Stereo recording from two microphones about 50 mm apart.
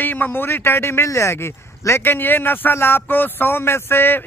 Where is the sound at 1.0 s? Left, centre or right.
Left.